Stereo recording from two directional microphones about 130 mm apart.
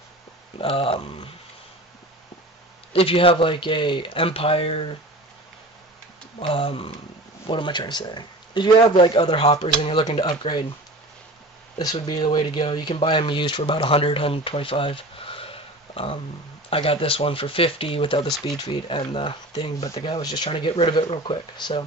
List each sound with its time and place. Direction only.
0.6 s speech: 45° left (ahead or behind)
2.9 s speech: 45° left (ahead or behind)
6.4 s speech: 45° left (ahead or behind)
11.8 s speech: 30° left (ahead or behind)